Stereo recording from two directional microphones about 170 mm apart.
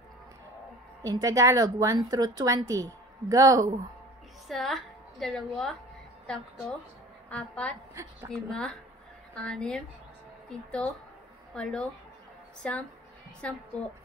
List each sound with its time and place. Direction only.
1.0 s a woman's voice: 20° right (ahead or behind)
4.5 s a woman's voice: centre (ahead or behind)
7.9 s a woman's voice: 15° right (ahead or behind)
8.3 s speech: 5° left (ahead or behind)
11.5 s speech: 5° left (ahead or behind)